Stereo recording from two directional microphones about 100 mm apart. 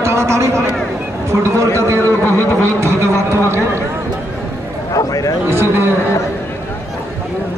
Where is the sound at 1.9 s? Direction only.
20° left (ahead or behind).